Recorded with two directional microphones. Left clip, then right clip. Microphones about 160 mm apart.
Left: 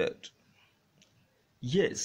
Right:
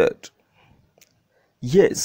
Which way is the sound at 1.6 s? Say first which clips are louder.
Right 12 dB; 50° right (ahead or behind).